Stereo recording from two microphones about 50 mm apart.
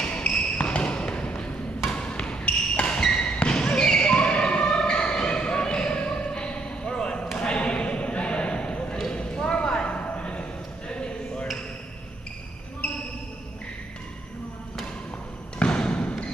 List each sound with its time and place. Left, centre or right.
0.6 s basketball bounce: left
7.3 s a sound: left
9.1 s clip-clop: centre
9.7 s a sound: centre
12.8 s basketball bounce: left
15.6 s basketball bounce: centre